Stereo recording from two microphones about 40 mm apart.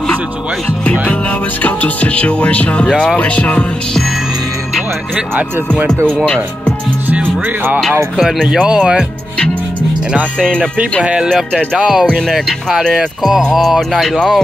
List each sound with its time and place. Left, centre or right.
1.6 s speech: left
6.2 s speech: left
7.2 s speech: right
8.2 s speech: centre
8.5 s speech: right
11.3 s speech: centre
11.8 s speech: centre